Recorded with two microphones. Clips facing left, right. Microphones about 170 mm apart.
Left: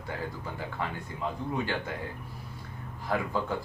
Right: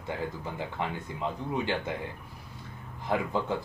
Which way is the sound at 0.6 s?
20° right (ahead or behind).